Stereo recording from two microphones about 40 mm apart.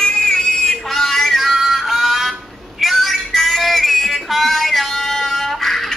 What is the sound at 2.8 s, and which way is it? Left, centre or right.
Music, centre.